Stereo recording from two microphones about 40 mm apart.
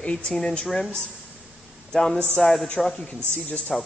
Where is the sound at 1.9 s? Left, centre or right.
Centre.